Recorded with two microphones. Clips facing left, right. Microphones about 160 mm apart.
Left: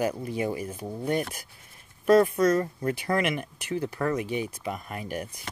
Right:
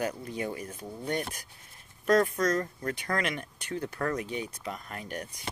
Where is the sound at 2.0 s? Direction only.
5° left (ahead or behind).